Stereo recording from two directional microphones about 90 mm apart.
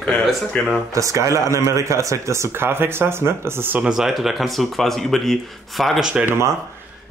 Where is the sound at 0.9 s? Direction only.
35° right (ahead or behind).